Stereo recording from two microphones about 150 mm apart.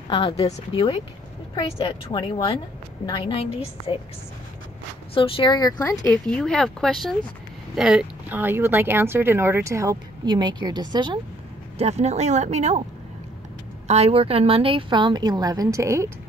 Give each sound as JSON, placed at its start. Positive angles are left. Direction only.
{"t": 0.1, "sound": "a woman's voice", "side_deg": 35}
{"t": 1.5, "sound": "a woman's voice", "side_deg": 30}
{"t": 5.1, "sound": "a woman's voice", "side_deg": 35}
{"t": 6.0, "sound": "speech", "side_deg": 5}
{"t": 11.8, "sound": "speech", "side_deg": -45}
{"t": 13.8, "sound": "a woman's voice", "side_deg": -45}